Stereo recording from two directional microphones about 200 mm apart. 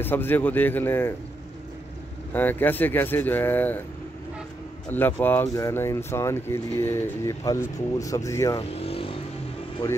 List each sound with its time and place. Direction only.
0.0 s speech: 10° left (ahead or behind)
2.3 s speech: 10° left (ahead or behind)
4.8 s speech: 10° left (ahead or behind)
8.5 s speech: 30° left (ahead or behind)